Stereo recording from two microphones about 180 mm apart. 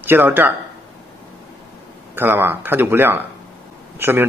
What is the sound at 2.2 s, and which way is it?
A man's voice, 10° right (ahead or behind).